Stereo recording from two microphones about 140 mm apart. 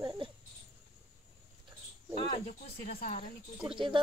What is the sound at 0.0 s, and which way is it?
Babbling, 30° right (ahead or behind).